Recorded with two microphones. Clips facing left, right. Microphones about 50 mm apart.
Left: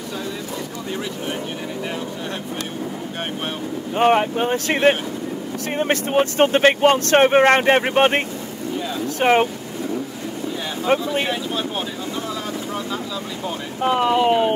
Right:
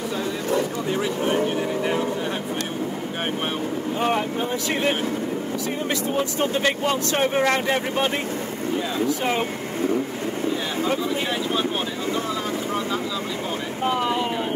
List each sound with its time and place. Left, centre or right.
4.0 s speech: left
14.1 s speech: left